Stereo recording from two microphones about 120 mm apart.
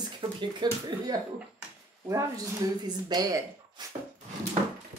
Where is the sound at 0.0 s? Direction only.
40° right (ahead or behind).